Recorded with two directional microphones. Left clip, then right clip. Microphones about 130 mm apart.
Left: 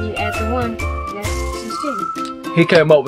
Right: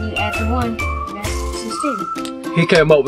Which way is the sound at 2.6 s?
55° left (ahead or behind).